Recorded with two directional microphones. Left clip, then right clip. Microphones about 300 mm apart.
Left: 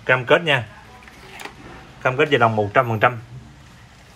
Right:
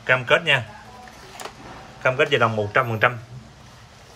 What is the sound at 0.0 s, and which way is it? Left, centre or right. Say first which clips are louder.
Speech: left 2 dB; centre.